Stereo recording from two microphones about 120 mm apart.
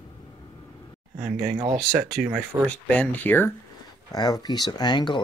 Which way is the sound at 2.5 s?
25° right (ahead or behind).